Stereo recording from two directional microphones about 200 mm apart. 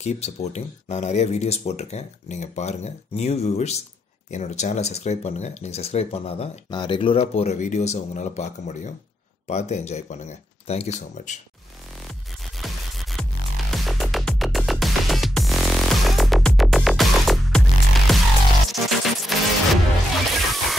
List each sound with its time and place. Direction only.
0.0 s speech: 35° left (ahead or behind)
12.5 s music: centre (ahead or behind)